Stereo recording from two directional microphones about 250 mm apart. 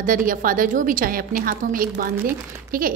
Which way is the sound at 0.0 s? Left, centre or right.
Right.